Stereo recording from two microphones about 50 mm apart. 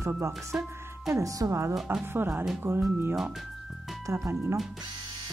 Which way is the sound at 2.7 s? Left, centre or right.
Right.